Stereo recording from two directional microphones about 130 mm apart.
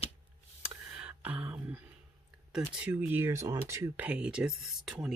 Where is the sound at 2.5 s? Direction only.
15° right (ahead or behind).